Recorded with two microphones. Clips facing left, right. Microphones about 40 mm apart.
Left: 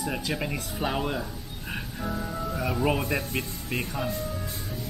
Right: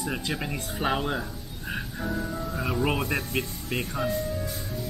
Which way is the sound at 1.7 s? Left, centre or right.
Centre.